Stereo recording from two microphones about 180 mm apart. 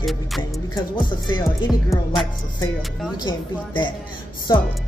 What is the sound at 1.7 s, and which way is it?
Music, centre (ahead or behind).